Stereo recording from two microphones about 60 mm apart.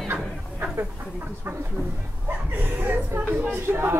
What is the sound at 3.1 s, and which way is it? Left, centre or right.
Speech, right.